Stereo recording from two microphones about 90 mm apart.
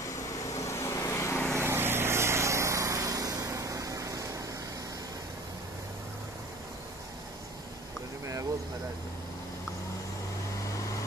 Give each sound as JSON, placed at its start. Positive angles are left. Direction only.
{"t": 0.6, "sound": "vehicle", "side_deg": 35}
{"t": 1.6, "sound": "vehicle", "side_deg": -25}